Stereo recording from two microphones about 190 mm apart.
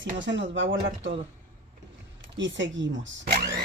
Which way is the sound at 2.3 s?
75° right (ahead or behind).